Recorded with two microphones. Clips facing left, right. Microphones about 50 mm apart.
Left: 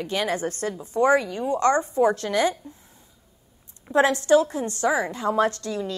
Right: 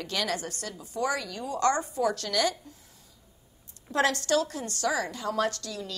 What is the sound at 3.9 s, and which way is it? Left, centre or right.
A woman's voice, left.